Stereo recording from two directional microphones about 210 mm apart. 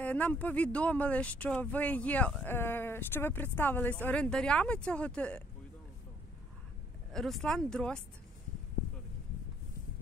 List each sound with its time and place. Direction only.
0.0 s a woman's voice: 5° left (ahead or behind)
7.1 s a woman's voice: centre (ahead or behind)